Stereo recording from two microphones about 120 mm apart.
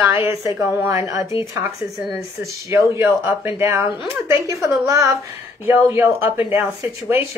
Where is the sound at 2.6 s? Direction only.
25° right (ahead or behind).